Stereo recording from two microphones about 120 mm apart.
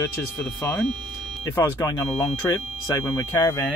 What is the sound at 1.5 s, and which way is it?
Speech, 25° left (ahead or behind).